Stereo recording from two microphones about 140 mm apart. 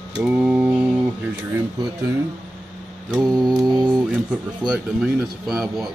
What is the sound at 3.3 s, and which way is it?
Mantra, 30° right (ahead or behind).